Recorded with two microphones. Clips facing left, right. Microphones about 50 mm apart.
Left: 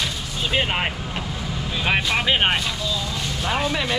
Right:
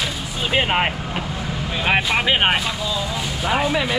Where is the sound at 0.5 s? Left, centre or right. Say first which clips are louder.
Right 4 dB; centre.